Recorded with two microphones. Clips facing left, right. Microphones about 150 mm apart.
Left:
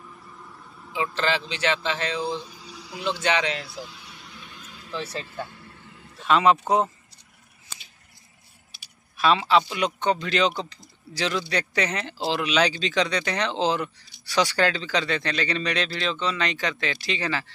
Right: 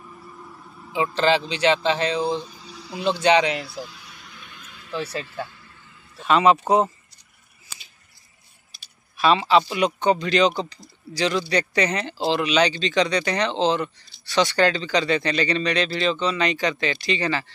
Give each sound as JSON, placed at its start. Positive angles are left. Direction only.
{"t": 0.9, "sound": "speech", "side_deg": -20}
{"t": 2.4, "sound": "a sound", "side_deg": 10}
{"t": 2.9, "sound": "speech", "side_deg": -20}
{"t": 3.8, "sound": "vehicle", "side_deg": 25}
{"t": 5.0, "sound": "speech", "side_deg": 25}
{"t": 5.5, "sound": "a sound", "side_deg": 55}
{"t": 6.1, "sound": "speech", "side_deg": 0}
{"t": 9.1, "sound": "speech", "side_deg": 0}